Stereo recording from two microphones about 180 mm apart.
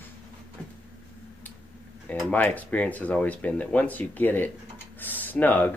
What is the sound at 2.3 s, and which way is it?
Speech, 10° left (ahead or behind).